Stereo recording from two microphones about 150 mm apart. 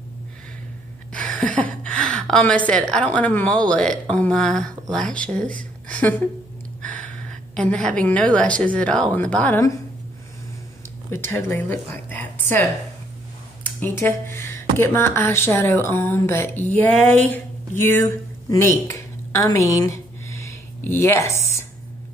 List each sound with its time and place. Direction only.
1.1 s a woman's voice: 5° left (ahead or behind)
6.8 s a sound: 10° left (ahead or behind)
8.6 s speech: 10° left (ahead or behind)
11.1 s speech: 15° left (ahead or behind)
13.7 s a woman's voice: 15° left (ahead or behind)